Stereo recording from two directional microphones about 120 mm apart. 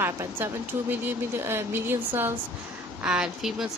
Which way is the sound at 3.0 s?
5° right (ahead or behind).